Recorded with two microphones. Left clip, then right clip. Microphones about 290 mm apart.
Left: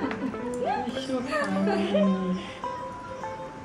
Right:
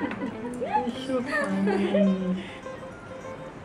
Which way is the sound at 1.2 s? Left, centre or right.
Centre.